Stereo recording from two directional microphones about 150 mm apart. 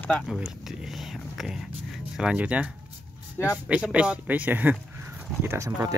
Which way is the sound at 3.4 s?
15° left (ahead or behind).